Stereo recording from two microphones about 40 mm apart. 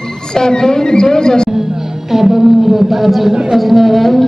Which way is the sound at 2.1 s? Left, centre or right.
Centre.